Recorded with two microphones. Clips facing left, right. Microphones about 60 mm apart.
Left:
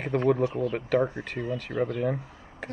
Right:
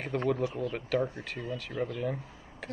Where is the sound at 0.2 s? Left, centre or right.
Left.